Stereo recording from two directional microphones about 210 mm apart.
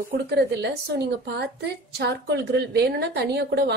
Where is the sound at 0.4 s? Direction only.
50° right (ahead or behind).